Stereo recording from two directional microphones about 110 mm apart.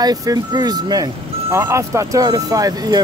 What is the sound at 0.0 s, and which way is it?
Speech, 35° right (ahead or behind).